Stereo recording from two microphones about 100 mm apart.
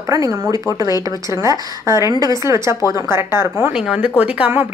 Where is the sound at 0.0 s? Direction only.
35° right (ahead or behind).